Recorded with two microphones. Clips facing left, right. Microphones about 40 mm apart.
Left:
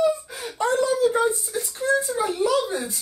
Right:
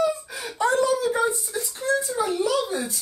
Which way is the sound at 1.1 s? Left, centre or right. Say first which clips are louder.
Left 1 dB; left.